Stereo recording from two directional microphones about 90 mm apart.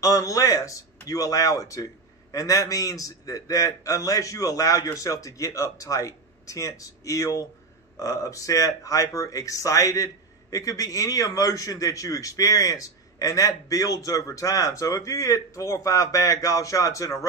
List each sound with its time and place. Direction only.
0.0 s speech: 40° left (ahead or behind)